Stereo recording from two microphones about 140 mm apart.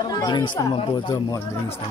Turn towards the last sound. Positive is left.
turn(degrees=30)  # may be behind; listen again after turning